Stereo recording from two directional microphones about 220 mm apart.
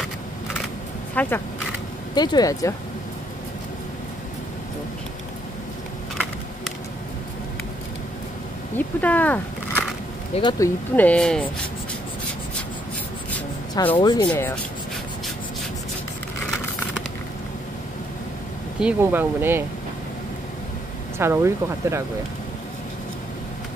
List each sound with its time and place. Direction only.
1.2 s speech: 5° left (ahead or behind)
2.1 s speech: 20° left (ahead or behind)
8.7 s speech: 5° left (ahead or behind)
10.3 s speech: 20° left (ahead or behind)
11.0 s speech: 5° left (ahead or behind)
13.9 s speech: 20° left (ahead or behind)
14.2 s speech: 5° left (ahead or behind)
18.8 s speech: 5° right (ahead or behind)
21.2 s speech: 10° right (ahead or behind)